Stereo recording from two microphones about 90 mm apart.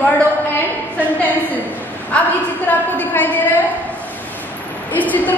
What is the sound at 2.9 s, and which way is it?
Speech, 20° left (ahead or behind).